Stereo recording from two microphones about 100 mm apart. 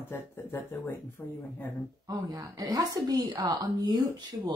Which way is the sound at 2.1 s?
35° right (ahead or behind).